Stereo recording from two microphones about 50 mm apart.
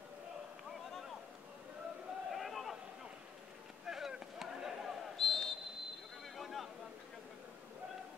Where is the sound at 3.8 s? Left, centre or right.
Centre.